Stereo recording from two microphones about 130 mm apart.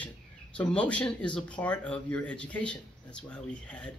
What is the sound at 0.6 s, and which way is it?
Speech, 10° left (ahead or behind).